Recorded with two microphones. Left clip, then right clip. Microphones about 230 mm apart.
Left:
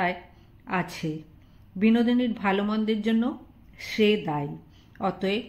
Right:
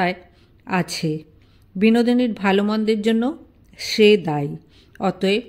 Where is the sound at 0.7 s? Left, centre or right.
Right.